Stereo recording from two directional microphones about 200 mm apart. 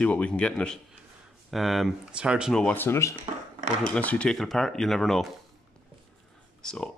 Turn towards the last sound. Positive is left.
turn(degrees=5)  # may be behind; listen again after turning